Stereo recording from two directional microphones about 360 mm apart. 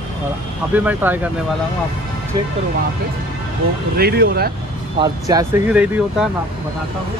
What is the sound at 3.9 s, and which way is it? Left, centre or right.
Speech, right.